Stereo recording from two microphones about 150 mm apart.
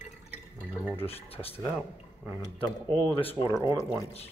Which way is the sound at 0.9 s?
40° left (ahead or behind).